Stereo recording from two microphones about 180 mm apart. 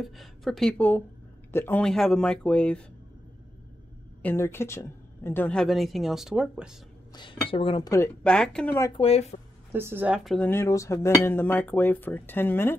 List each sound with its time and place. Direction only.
0.0 s speech: centre (ahead or behind)
4.2 s speech: 10° left (ahead or behind); by 6.8 s 5° right (ahead or behind)
7.1 s cutlery: 25° left (ahead or behind)
8.2 s speech: 5° left (ahead or behind)
8.9 s speech: 35° left (ahead or behind)
9.7 s speech: 10° right (ahead or behind); by 12.7 s 10° left (ahead or behind)